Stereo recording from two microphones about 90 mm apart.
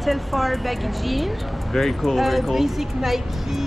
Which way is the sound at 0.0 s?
Centre (ahead or behind).